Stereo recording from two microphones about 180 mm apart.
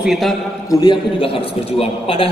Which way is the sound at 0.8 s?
30° left (ahead or behind).